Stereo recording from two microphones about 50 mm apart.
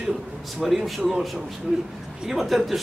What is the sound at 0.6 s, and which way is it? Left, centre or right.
A man's voice, centre.